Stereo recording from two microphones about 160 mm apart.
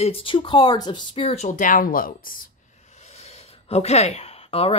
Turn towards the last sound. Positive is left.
turn(degrees=40)  # may be behind; listen again after turning